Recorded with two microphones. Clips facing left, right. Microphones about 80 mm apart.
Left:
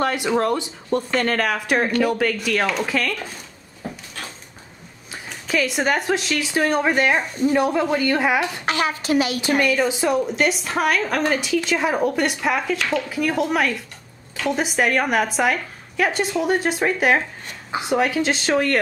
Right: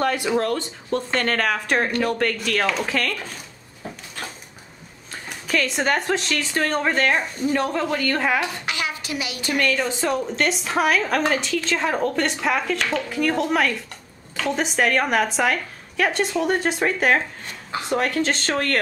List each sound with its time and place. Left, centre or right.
0.0 s speech: centre
0.5 s a woman's voice: centre
0.9 s a woman's voice: centre
5.1 s a woman's voice: centre
8.6 s a woman's voice: left
9.6 s a woman's voice: centre